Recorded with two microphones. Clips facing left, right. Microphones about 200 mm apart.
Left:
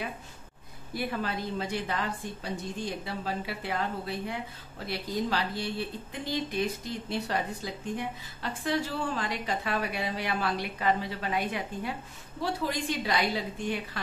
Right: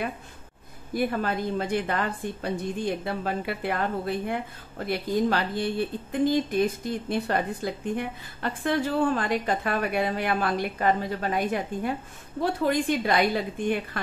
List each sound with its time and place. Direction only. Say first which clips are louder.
0.9 s a woman's voice: right 6 dB; 50° right (ahead or behind)